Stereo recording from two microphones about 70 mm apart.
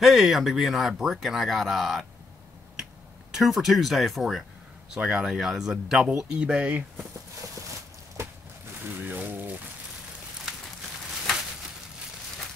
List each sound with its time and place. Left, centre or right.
0.0 s speech: centre
3.3 s speech: centre
4.9 s speech: centre
5.2 s speech: centre
9.0 s speech: right